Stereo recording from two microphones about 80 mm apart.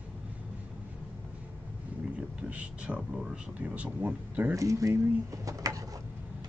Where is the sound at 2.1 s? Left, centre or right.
Centre.